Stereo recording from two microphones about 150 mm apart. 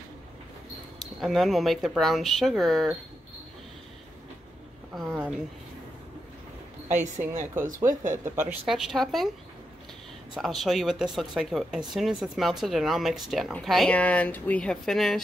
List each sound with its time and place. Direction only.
1.2 s speech: centre (ahead or behind)
4.9 s a woman's voice: centre (ahead or behind)
6.9 s a woman's voice: 55° right (ahead or behind)
8.6 s speech: 5° right (ahead or behind)
10.3 s speech: centre (ahead or behind)